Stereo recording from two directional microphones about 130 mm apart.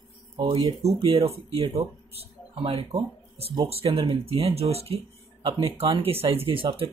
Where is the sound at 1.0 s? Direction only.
50° right (ahead or behind).